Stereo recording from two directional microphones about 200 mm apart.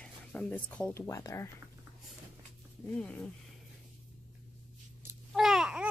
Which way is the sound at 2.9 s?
5° left (ahead or behind).